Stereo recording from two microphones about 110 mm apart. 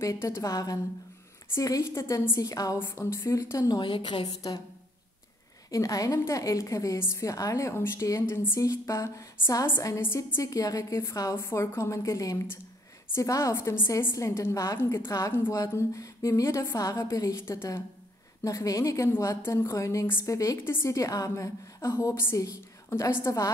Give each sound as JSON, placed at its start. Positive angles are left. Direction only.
{"t": 0.0, "sound": "a woman's voice", "side_deg": 30}
{"t": 5.7, "sound": "a woman's voice", "side_deg": 30}